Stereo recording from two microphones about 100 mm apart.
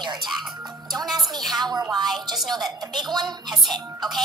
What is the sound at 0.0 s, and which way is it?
Speech, 45° right (ahead or behind).